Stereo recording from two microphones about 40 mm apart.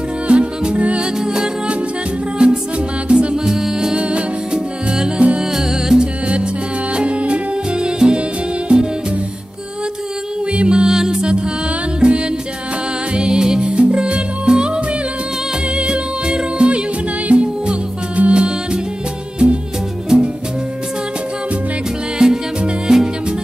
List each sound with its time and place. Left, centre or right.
0.3 s music: right
1.2 s music: centre
3.4 s music: centre
3.9 s music: right
5.5 s music: centre
7.0 s music: right
10.5 s music: right
10.9 s music: centre
15.7 s music: right
22.2 s music: centre